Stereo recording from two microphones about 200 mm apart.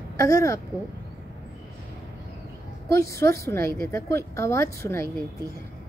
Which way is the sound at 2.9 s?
15° left (ahead or behind).